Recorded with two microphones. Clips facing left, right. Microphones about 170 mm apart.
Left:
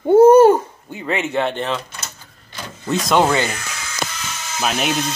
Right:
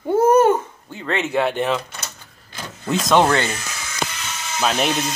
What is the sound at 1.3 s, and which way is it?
Speech, 5° right (ahead or behind).